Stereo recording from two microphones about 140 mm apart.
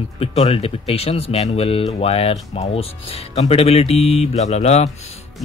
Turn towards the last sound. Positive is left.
turn(degrees=50)  # may be behind; listen again after turning